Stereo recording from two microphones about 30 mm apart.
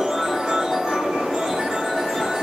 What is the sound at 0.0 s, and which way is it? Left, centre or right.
Music, centre.